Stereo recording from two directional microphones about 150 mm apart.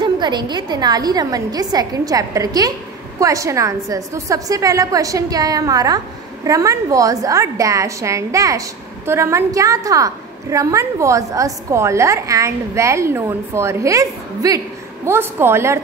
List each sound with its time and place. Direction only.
0.0 s a woman's voice: 30° right (ahead or behind)